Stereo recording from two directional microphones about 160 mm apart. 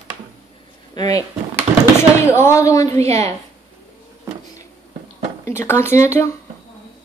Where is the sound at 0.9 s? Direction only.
20° left (ahead or behind).